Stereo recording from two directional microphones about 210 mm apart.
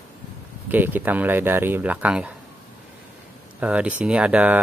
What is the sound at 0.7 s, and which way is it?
Speech, 10° right (ahead or behind).